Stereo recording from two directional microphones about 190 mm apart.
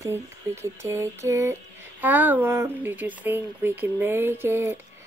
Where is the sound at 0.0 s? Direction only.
15° right (ahead or behind).